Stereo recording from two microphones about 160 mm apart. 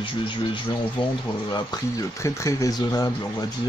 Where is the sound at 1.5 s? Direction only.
20° left (ahead or behind).